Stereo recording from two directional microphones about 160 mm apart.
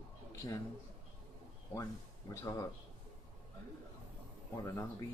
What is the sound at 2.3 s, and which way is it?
Speech, 15° left (ahead or behind).